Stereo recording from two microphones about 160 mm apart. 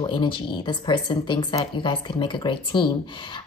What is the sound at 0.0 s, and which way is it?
Speech, 30° left (ahead or behind).